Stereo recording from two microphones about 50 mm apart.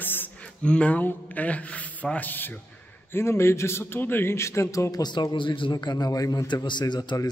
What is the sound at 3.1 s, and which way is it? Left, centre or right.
Speech, left.